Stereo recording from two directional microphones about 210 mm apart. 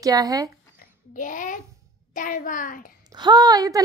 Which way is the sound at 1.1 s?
40° left (ahead or behind).